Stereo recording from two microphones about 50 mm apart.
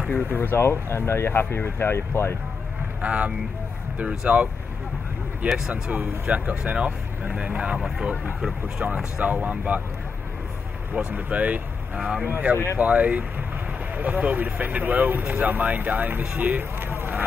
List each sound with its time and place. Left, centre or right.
0.1 s speech: left
3.0 s speech: right
5.7 s speech: right; by 8.8 s centre
9.2 s speech: right
11.1 s speech: right
12.0 s speech: centre
12.3 s speech: right
12.7 s speech: right
16.9 s a sound: right